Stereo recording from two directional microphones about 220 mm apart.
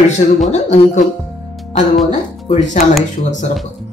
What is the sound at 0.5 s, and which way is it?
Speech, 30° left (ahead or behind).